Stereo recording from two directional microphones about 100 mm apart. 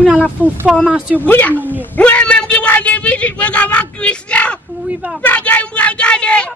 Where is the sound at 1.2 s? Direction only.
20° left (ahead or behind).